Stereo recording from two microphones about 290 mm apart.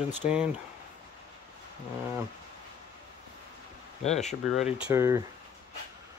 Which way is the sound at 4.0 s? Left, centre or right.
Left.